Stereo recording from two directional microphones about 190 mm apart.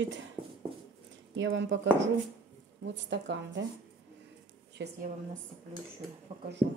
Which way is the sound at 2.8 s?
70° right (ahead or behind).